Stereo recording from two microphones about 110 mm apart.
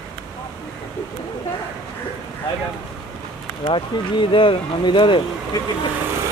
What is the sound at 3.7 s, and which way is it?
Speech, 50° left (ahead or behind).